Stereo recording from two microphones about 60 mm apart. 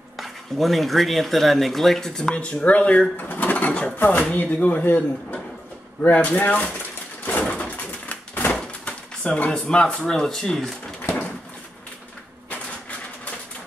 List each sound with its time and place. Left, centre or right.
0.2 s speech: centre; by 6.7 s left
7.4 s bird: left
8.8 s pigeon: left
9.5 s speech: centre
11.0 s a sound: left